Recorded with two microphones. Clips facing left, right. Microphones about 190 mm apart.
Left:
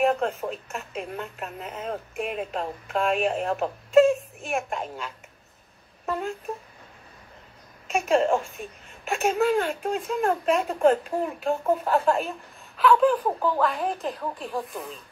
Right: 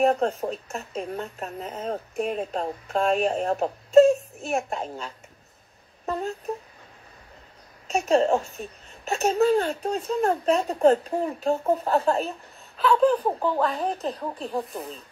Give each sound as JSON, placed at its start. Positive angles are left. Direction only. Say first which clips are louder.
{"t": 0.0, "sound": "a woman's voice", "louder": "right 2 dB", "side_deg": -40}
{"t": 6.0, "sound": "a woman's voice", "louder": "right 1 dB", "side_deg": -40}
{"t": 7.9, "sound": "a woman's voice", "louder": "right 1 dB", "side_deg": -40}
{"t": 11.5, "sound": "speech", "louder": "left 1 dB", "side_deg": -25}
{"t": 13.0, "sound": "a woman's voice", "louder": "right 1 dB", "side_deg": -40}